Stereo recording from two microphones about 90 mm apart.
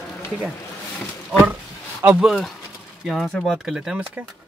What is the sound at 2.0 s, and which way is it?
Speech, 30° right (ahead or behind).